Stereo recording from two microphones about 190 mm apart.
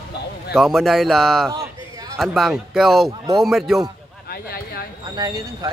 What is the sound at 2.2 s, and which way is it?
Speech, centre (ahead or behind).